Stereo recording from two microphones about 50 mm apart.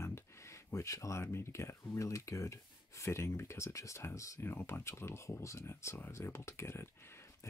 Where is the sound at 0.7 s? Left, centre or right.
Left.